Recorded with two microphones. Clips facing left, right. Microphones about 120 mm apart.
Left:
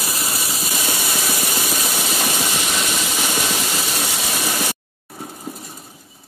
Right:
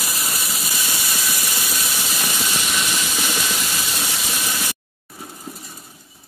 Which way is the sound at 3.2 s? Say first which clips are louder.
Left 3 dB; 35° left (ahead or behind).